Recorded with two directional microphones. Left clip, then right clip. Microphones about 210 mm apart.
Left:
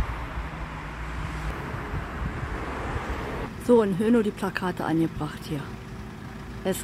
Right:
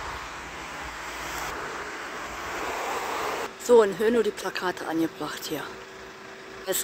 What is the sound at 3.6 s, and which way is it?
Speech, 10° right (ahead or behind).